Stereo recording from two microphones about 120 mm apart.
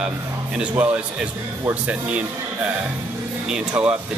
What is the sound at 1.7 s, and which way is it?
Speech, 10° right (ahead or behind).